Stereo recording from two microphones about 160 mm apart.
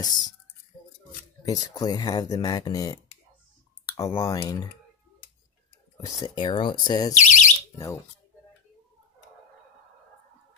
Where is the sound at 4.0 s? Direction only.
20° left (ahead or behind).